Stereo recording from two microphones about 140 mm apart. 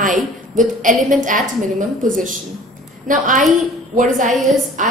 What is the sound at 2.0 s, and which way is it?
A woman's voice, 70° right (ahead or behind).